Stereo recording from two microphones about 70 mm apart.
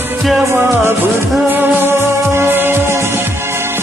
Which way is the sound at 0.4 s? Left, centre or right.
Right.